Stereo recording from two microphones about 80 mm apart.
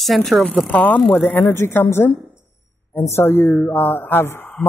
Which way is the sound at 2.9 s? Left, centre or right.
Left.